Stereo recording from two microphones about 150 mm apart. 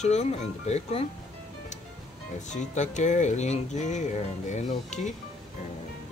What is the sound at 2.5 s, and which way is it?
Speech, 55° left (ahead or behind).